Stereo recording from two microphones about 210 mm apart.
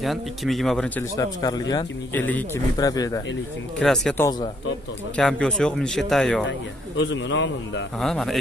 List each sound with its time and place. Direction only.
0.0 s speech: centre (ahead or behind); by 3.2 s 15° left (ahead or behind)
3.8 s speech: centre (ahead or behind)
7.0 s a man's voice: 60° left (ahead or behind)
8.0 s speech: centre (ahead or behind)